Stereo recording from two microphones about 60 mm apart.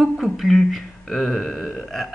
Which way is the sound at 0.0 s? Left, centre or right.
Centre.